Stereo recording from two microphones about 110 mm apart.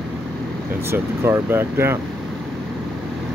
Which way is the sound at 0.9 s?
20° right (ahead or behind).